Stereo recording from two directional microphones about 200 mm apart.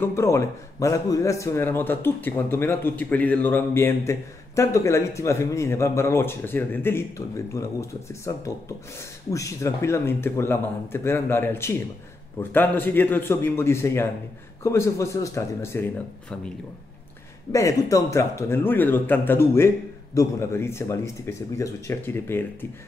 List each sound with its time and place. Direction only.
0.0 s a man's voice: 15° left (ahead or behind)
9.3 s a man's voice: 15° left (ahead or behind)